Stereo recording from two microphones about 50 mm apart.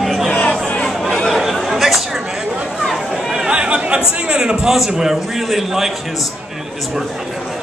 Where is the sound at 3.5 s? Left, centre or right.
Right.